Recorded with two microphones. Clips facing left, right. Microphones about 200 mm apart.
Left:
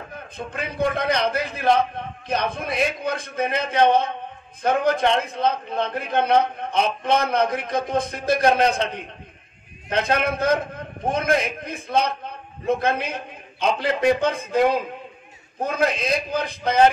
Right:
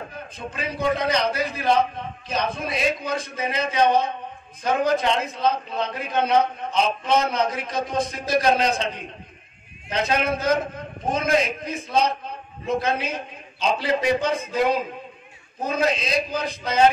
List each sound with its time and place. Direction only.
0.5 s a man's voice: 55° left (ahead or behind)